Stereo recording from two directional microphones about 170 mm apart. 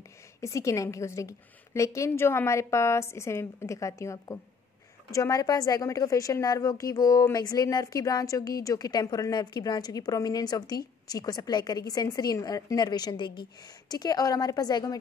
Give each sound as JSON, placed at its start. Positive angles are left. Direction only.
{"t": 0.4, "sound": "a woman's voice", "side_deg": 20}